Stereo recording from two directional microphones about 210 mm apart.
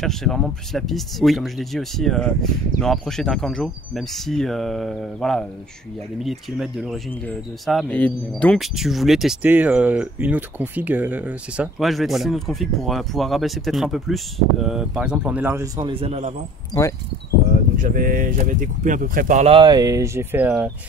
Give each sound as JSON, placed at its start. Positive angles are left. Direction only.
{"t": 0.0, "sound": "speech", "side_deg": 0}
{"t": 16.7, "sound": "speech", "side_deg": 20}
{"t": 17.7, "sound": "speech", "side_deg": -40}